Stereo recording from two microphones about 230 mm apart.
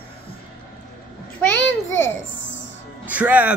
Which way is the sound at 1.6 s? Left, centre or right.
Left.